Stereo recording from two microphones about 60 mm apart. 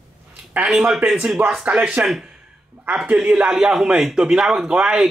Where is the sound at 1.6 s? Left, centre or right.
Right.